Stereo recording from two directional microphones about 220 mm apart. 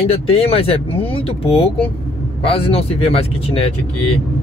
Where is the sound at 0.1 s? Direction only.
25° left (ahead or behind).